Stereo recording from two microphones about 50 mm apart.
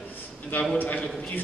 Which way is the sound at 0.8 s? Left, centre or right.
Left.